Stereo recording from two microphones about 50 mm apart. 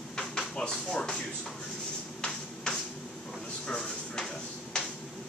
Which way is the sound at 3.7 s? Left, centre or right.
Centre.